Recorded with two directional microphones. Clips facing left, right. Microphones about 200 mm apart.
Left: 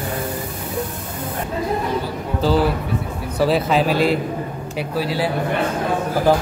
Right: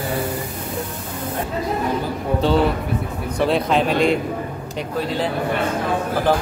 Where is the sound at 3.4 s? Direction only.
5° left (ahead or behind).